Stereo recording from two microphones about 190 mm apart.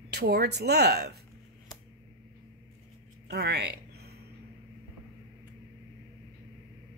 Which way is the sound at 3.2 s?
60° right (ahead or behind).